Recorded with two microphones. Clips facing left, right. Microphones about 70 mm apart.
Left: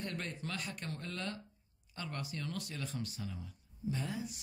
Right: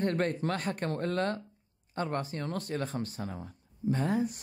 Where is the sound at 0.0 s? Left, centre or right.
Right.